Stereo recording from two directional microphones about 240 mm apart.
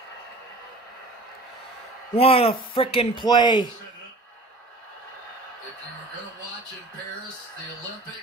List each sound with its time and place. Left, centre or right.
2.1 s speech: left